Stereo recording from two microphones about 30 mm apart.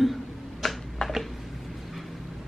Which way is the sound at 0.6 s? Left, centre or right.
Centre.